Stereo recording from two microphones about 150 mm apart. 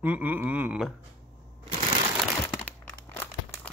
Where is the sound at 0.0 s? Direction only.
10° right (ahead or behind).